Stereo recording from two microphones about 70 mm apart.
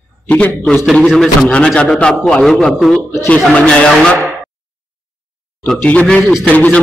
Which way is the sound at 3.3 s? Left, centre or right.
Centre.